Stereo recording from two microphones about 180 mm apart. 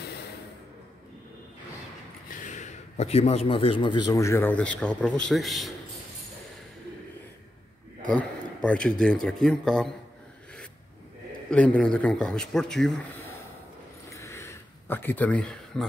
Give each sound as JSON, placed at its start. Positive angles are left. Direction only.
{"t": 2.4, "sound": "a man's voice", "side_deg": 40}
{"t": 8.1, "sound": "speech", "side_deg": 5}
{"t": 11.5, "sound": "speech", "side_deg": 5}
{"t": 14.1, "sound": "a sound", "side_deg": 15}